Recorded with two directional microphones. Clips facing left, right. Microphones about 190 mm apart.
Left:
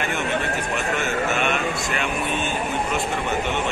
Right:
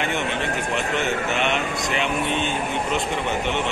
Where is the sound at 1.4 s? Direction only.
20° right (ahead or behind).